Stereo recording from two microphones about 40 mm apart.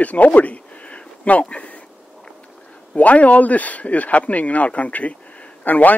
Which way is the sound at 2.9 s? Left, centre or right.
Left.